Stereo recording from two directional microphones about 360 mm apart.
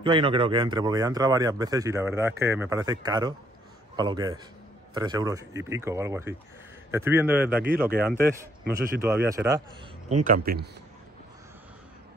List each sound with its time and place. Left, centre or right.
0.0 s a man's voice: centre
10.0 s a man's voice: right